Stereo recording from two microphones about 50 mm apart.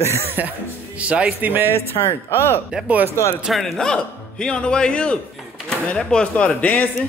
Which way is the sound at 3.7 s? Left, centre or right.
Centre.